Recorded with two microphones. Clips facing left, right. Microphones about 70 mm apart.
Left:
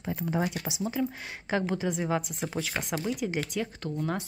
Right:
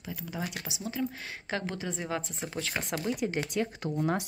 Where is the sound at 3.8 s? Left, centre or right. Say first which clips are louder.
Right 3 dB; centre.